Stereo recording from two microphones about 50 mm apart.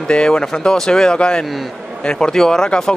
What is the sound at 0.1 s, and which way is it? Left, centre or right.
Speech, centre.